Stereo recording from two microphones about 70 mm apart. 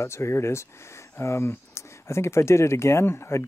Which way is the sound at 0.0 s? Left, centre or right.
Left.